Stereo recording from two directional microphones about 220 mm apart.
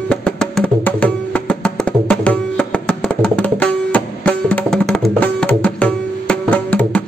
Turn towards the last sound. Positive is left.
turn(degrees=5)  # may be behind; listen again after turning